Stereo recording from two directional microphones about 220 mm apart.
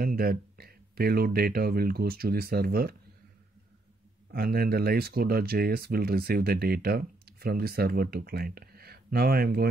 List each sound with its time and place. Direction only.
0.0 s speech: 40° right (ahead or behind)
4.3 s speech: 45° right (ahead or behind)